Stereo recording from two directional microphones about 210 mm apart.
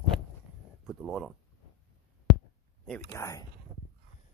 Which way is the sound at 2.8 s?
10° left (ahead or behind).